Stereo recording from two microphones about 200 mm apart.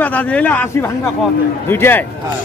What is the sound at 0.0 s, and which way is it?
Speech, 10° left (ahead or behind).